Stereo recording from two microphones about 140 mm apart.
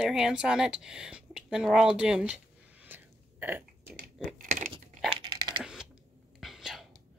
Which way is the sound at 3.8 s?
90° right.